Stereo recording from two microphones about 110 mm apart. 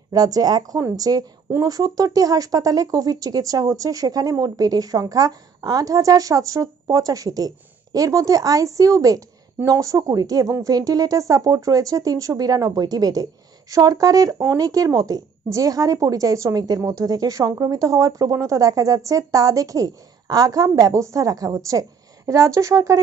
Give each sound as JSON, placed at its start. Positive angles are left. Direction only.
{"t": 0.1, "sound": "speech", "side_deg": -35}